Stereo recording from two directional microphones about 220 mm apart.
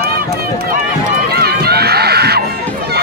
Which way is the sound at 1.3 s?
45° right (ahead or behind).